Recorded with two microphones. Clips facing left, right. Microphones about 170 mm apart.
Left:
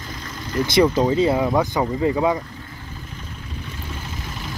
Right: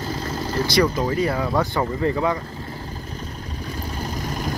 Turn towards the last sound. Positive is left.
turn(degrees=-40)  # may be behind; listen again after turning